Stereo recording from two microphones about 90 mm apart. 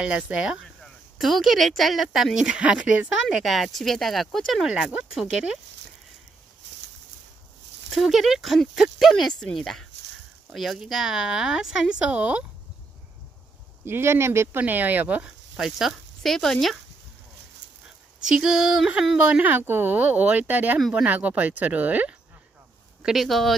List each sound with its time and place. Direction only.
0.0 s speech: 10° right (ahead or behind)
3.3 s speech: centre (ahead or behind)
7.9 s speech: centre (ahead or behind)
13.8 s speech: 25° right (ahead or behind)
14.6 s speech: 20° right (ahead or behind); by 16.7 s 5° left (ahead or behind)
17.8 s speech: 5° right (ahead or behind)
23.0 s speech: centre (ahead or behind)